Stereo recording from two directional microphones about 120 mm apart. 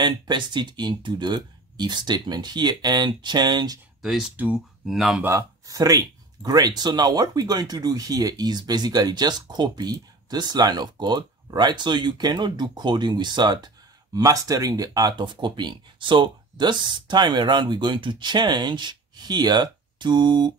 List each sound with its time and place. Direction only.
0.0 s speech: 40° right (ahead or behind)
4.0 s speech: 5° right (ahead or behind)
5.2 s speech: 25° right (ahead or behind)